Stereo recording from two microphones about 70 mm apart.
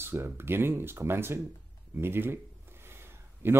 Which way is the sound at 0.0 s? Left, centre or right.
Right.